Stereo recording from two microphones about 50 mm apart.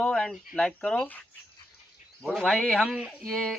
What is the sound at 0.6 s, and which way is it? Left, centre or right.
Speech, centre.